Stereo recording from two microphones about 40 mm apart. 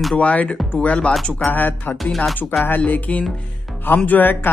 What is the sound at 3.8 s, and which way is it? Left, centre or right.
Speech, left.